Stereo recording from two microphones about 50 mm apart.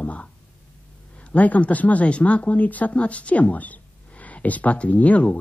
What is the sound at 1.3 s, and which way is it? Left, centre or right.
Speech, left.